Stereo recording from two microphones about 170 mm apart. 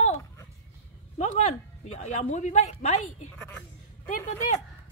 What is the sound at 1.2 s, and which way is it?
Speech, 40° left (ahead or behind).